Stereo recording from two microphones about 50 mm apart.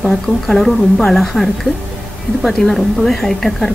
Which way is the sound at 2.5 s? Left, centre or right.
Centre.